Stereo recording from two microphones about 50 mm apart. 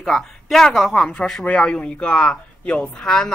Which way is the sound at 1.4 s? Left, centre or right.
Left.